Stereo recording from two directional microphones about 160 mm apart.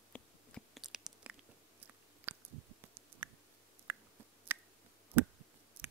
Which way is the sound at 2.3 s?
15° right (ahead or behind).